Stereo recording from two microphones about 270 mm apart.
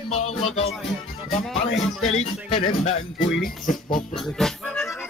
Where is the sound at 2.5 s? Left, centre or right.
Left.